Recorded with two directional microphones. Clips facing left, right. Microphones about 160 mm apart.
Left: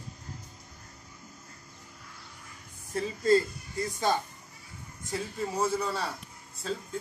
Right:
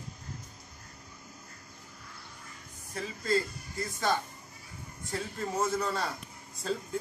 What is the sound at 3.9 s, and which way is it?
Speech, 15° left (ahead or behind).